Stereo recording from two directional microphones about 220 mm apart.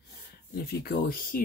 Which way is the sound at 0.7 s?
45° left (ahead or behind).